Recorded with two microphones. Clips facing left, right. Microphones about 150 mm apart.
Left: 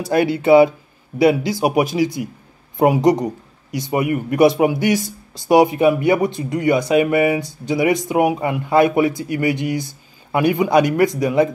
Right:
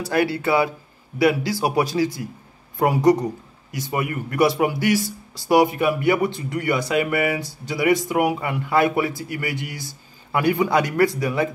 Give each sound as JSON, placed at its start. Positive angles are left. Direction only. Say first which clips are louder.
{"t": 0.1, "sound": "speech", "louder": "left 8 dB", "side_deg": 20}